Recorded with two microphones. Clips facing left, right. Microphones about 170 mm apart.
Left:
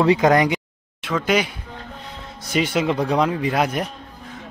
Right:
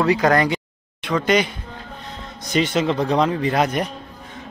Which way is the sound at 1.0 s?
5° left (ahead or behind).